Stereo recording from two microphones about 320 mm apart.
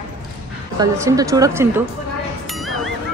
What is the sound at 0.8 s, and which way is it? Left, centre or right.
Speech, centre.